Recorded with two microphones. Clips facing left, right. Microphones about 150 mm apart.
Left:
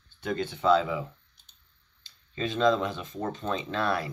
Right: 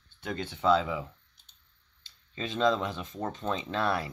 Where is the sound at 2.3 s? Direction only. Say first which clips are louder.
Left 3 dB; 20° right (ahead or behind).